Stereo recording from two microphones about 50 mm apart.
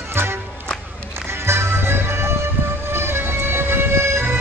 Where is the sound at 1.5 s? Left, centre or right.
Right.